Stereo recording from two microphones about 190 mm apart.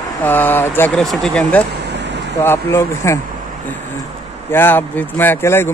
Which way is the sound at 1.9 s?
65° right (ahead or behind).